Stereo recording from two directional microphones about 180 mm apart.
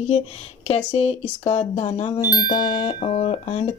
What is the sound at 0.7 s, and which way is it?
Speech, 35° left (ahead or behind).